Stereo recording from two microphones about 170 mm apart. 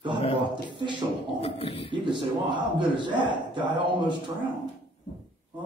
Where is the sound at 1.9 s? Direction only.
30° right (ahead or behind).